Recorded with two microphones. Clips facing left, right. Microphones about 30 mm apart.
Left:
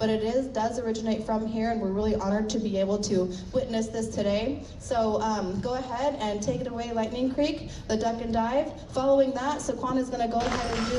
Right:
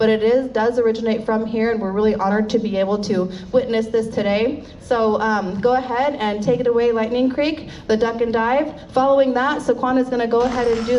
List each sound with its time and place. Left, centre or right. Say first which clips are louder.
0.0 s a woman's voice: right 10 dB; right
10.4 s speech: right 10 dB; centre